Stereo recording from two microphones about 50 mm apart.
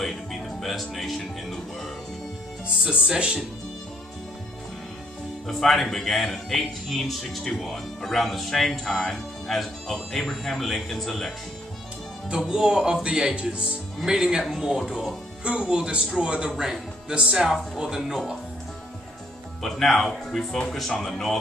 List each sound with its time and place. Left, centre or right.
0.0 s music: centre
2.8 s speech: centre
5.5 s speech: centre
12.4 s speech: centre
15.4 s speech: centre
19.6 s speech: centre